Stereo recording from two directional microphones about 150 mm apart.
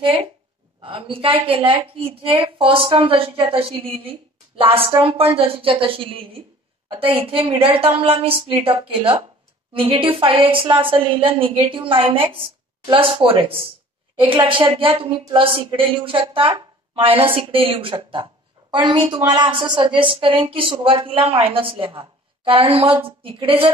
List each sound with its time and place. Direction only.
0.0 s a woman's voice: 40° right (ahead or behind)